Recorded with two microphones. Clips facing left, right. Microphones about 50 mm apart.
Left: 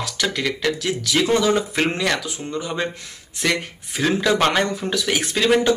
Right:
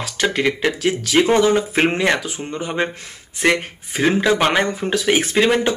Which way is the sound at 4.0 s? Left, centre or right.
Right.